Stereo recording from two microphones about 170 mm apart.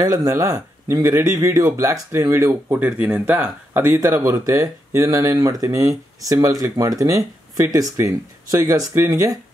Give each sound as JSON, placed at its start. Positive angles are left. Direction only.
{"t": 0.0, "sound": "speech", "side_deg": -20}